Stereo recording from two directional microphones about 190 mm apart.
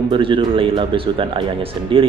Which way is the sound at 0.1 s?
25° right (ahead or behind).